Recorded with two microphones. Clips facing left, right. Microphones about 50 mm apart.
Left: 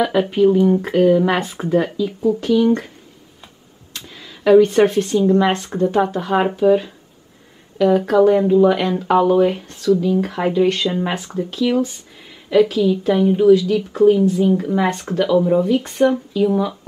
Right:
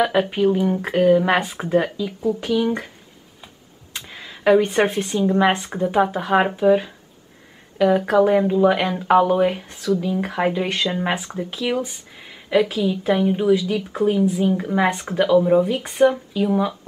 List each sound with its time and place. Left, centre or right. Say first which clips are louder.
0.0 s speech: left 3 dB; centre
3.9 s speech: right 1 dB; centre
8.0 s speech: left 3 dB; centre